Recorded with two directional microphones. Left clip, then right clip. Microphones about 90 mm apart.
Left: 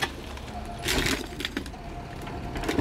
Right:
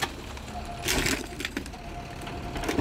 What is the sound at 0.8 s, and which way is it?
Coin, centre (ahead or behind).